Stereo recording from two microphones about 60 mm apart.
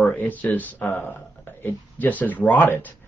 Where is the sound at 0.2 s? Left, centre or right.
Left.